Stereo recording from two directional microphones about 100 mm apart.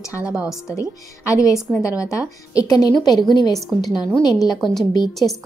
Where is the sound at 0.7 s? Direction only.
30° left (ahead or behind).